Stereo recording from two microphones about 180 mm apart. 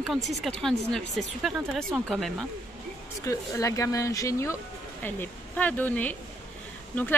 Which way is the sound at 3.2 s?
15° left (ahead or behind).